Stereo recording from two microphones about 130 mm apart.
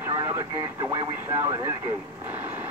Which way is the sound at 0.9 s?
20° right (ahead or behind).